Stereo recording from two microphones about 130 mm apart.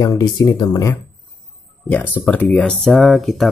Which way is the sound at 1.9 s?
15° left (ahead or behind).